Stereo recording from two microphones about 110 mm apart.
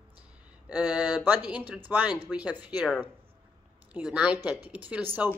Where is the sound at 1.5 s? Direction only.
15° right (ahead or behind).